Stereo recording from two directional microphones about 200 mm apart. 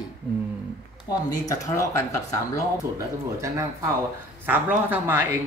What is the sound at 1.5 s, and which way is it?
Speech, 15° left (ahead or behind).